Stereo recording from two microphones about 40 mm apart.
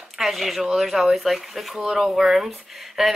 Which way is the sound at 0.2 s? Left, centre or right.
Centre.